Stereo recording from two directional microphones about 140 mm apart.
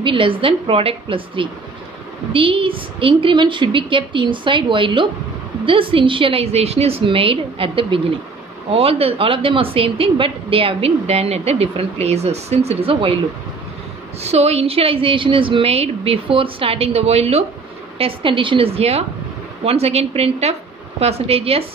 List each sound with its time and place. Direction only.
0.0 s a woman's voice: 35° right (ahead or behind)
14.2 s a woman's voice: 45° right (ahead or behind)